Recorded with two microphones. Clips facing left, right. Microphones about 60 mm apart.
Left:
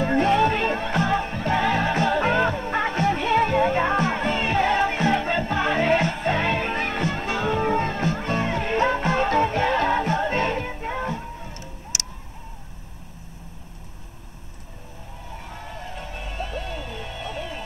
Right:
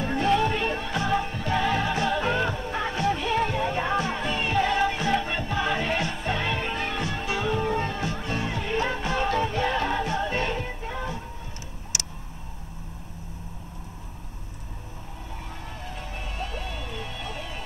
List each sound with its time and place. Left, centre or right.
0.0 s music: left
15.9 s music: centre